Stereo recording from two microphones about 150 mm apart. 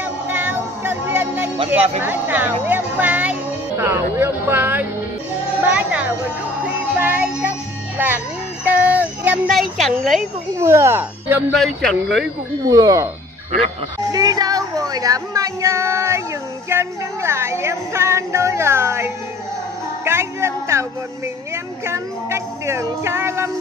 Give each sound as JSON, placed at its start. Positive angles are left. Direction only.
{"t": 0.3, "sound": "music", "side_deg": -15}
{"t": 1.7, "sound": "speech", "side_deg": -15}
{"t": 5.6, "sound": "music", "side_deg": -10}
{"t": 8.0, "sound": "speech", "side_deg": -15}
{"t": 8.6, "sound": "music", "side_deg": -10}
{"t": 9.5, "sound": "a man's voice", "side_deg": 0}
{"t": 10.6, "sound": "speech", "side_deg": -15}
{"t": 11.5, "sound": "a man's voice", "side_deg": 0}
{"t": 12.6, "sound": "speech", "side_deg": -25}
{"t": 14.1, "sound": "speech", "side_deg": -25}
{"t": 20.1, "sound": "music", "side_deg": -15}
{"t": 21.8, "sound": "speech", "side_deg": -20}